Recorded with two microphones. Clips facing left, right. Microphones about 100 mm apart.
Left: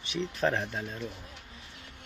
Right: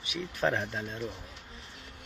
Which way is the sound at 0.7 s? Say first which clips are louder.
Right 1 dB; centre (ahead or behind).